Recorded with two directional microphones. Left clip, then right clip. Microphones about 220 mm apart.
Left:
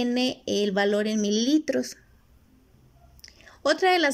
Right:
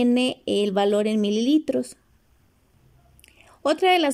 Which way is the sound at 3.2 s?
10° right (ahead or behind).